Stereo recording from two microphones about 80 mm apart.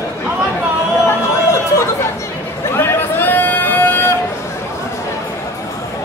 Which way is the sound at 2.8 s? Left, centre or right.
Left.